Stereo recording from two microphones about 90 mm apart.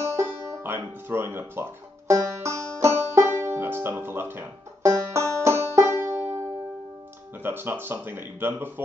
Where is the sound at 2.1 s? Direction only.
35° right (ahead or behind).